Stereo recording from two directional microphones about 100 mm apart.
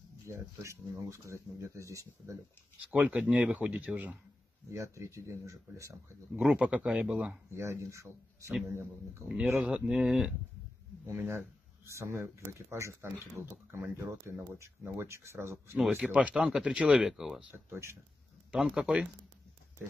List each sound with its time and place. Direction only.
0.3 s speech: 30° right (ahead or behind)
2.8 s speech: 10° right (ahead or behind)
4.6 s speech: 30° right (ahead or behind)
6.3 s speech: 15° right (ahead or behind)
7.5 s speech: 30° right (ahead or behind)
9.6 s speech: 10° right (ahead or behind)
11.1 s speech: 25° right (ahead or behind)
16.0 s speech: 15° right (ahead or behind)
17.6 s speech: 25° right (ahead or behind)
18.5 s speech: 10° right (ahead or behind)